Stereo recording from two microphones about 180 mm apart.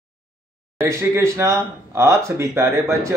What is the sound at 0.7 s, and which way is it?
Speech, 15° right (ahead or behind).